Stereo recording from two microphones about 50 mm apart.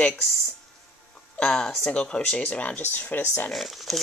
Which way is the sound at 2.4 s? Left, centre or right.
Left.